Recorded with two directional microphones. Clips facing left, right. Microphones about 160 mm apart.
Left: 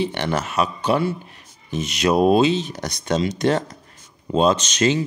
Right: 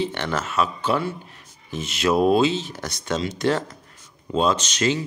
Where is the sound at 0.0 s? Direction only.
15° left (ahead or behind).